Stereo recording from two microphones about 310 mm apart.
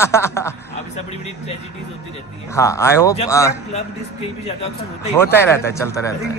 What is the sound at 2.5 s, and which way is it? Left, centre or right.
A man's voice, centre.